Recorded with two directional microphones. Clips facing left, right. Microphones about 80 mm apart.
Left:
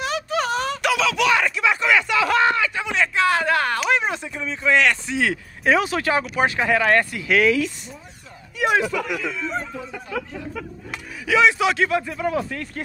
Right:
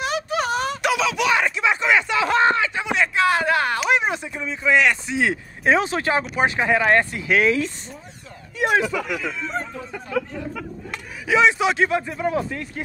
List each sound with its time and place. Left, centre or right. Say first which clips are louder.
0.0 s a sound: even; centre
4.3 s speech: even; centre; by 8.8 s right
10.1 s speech: right 4 dB; centre
11.2 s speech: even; right